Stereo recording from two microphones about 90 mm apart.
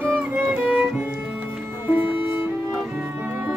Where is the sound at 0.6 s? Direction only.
10° right (ahead or behind).